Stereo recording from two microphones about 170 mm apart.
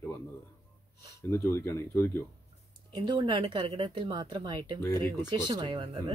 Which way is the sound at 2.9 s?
25° right (ahead or behind).